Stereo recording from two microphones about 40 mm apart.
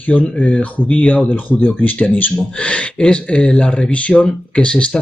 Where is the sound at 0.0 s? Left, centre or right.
Left.